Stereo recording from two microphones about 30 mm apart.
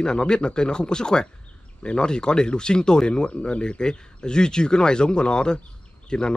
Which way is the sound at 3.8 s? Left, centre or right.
Left.